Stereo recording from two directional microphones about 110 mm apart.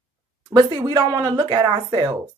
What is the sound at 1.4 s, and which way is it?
Speech, 45° right (ahead or behind).